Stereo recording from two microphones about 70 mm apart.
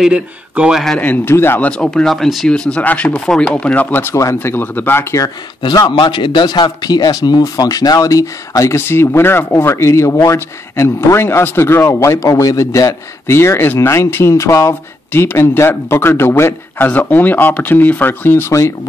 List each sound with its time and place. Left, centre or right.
0.1 s speech: centre
0.9 s speech: left
1.7 s speech: centre
2.8 s speech: left
3.9 s speech: left
5.6 s a man's voice: left
13.3 s speech: left